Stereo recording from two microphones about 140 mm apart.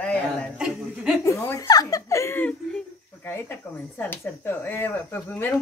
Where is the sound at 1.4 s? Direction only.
20° left (ahead or behind).